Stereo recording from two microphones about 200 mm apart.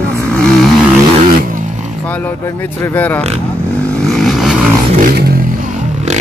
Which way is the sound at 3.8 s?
5° left (ahead or behind).